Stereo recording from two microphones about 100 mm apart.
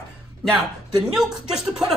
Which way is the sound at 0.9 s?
40° right (ahead or behind).